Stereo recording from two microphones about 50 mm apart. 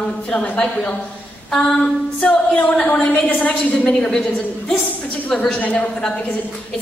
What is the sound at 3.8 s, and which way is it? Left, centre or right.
Speech, centre.